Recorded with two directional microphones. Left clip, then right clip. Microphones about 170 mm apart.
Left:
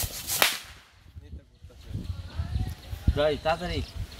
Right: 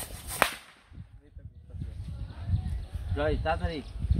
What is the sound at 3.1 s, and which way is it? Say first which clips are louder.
Speech: left 4 dB; 40° left (ahead or behind).